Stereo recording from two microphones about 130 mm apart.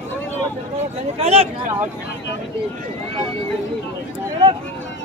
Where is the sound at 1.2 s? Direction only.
50° right (ahead or behind).